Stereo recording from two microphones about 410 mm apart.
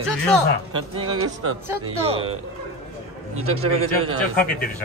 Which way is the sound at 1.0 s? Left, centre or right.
Right.